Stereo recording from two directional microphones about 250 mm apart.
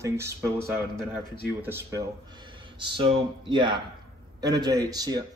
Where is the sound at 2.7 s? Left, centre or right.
Centre.